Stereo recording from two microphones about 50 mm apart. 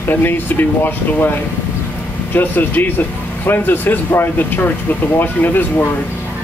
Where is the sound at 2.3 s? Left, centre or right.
Left.